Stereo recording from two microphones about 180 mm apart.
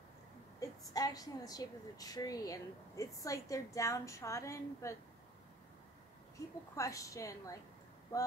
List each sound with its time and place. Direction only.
0.6 s a woman's voice: 20° left (ahead or behind)
6.7 s a woman's voice: 20° left (ahead or behind)